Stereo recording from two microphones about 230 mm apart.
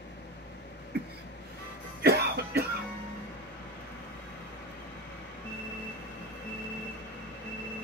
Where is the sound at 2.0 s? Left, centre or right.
Right.